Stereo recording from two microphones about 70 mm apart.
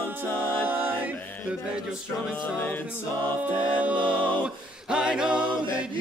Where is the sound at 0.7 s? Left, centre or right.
Right.